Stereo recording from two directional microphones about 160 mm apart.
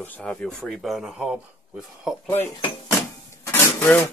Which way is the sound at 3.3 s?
15° left (ahead or behind).